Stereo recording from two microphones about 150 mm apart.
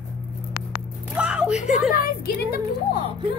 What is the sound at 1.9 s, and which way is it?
Speech, 85° left.